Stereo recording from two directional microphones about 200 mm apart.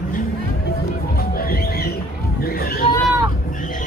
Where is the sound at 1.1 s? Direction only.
50° left (ahead or behind).